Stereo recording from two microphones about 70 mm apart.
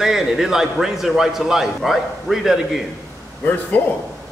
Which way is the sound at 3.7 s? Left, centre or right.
Left.